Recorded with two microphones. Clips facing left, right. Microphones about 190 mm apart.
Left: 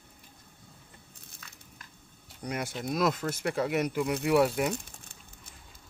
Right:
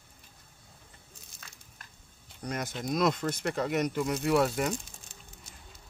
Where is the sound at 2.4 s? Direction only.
10° left (ahead or behind).